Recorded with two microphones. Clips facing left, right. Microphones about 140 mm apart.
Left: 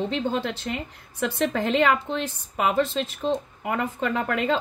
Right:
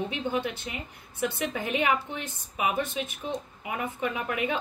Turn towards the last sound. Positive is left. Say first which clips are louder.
# left 5 dB
turn(degrees=70)  # may be behind; listen again after turning